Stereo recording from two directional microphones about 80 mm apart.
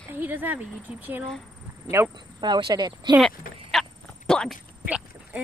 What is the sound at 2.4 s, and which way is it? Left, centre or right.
Speech, right.